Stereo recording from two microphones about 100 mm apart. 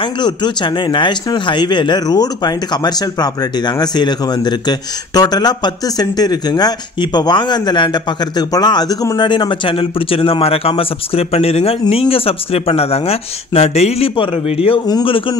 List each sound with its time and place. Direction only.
0.0 s speech: 50° left (ahead or behind); by 11.7 s 90° left
11.9 s speech: 75° left (ahead or behind)